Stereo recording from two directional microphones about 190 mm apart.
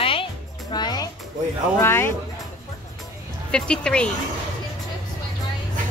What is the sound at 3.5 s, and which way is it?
Speech, 5° left (ahead or behind).